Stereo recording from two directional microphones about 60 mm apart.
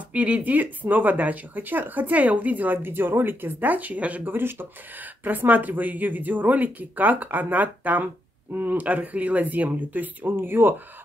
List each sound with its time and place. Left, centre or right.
0.1 s speech: right
2.8 s speech: right